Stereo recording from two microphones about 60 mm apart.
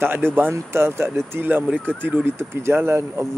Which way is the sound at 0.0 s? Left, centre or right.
Right.